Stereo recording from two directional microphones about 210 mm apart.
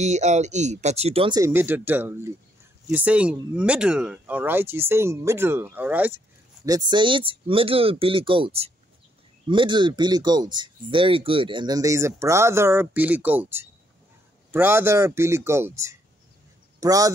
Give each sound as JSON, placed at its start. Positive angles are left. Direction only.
{"t": 0.0, "sound": "speech", "side_deg": -35}
{"t": 1.4, "sound": "speech", "side_deg": -10}